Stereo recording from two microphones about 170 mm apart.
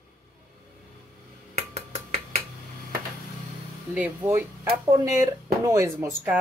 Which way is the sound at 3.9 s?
10° right (ahead or behind).